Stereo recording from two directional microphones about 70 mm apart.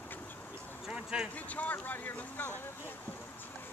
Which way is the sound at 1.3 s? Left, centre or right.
Left.